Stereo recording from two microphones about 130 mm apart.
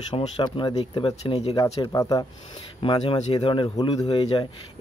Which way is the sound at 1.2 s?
50° left (ahead or behind).